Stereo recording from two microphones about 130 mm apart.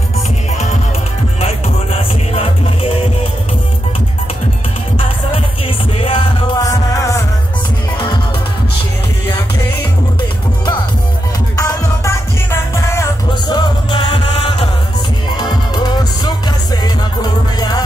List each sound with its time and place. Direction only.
2.3 s music: 50° left (ahead or behind)
5.9 s music: 45° left (ahead or behind)
6.7 s music: 25° left (ahead or behind)
11.5 s music: 25° left (ahead or behind)
13.3 s music: 35° left (ahead or behind)